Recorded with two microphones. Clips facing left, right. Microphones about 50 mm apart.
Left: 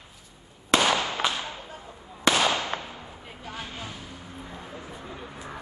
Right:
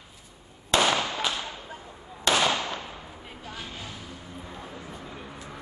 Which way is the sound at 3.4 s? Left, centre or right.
Left.